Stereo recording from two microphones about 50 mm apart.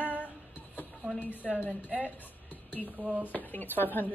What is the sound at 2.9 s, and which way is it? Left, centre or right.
Speech, right.